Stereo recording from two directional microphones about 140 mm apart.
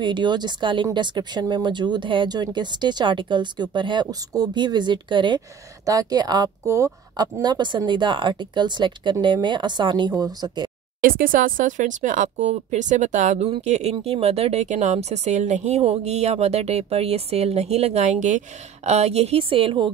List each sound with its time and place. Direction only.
0.0 s speech: 35° right (ahead or behind)
11.0 s speech: 90° right; by 13.5 s 65° right (ahead or behind)
13.6 s a woman's voice: 50° right (ahead or behind)